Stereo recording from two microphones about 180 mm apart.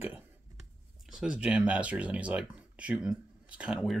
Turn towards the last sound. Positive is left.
turn(degrees=0)  # may be behind; listen again after turning